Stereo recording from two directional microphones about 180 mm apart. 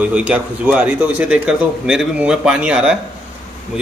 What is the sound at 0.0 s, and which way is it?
A man's voice, 5° right (ahead or behind).